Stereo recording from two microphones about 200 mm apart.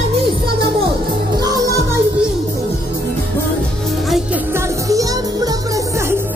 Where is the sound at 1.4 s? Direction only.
20° right (ahead or behind).